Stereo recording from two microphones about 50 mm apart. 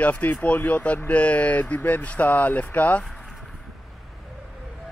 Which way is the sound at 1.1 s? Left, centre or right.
Left.